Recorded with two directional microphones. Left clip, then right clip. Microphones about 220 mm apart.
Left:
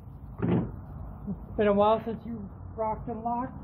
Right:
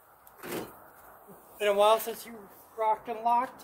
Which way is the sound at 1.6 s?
10° right (ahead or behind).